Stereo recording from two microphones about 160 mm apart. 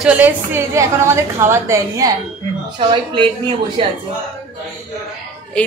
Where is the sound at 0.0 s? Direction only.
10° right (ahead or behind).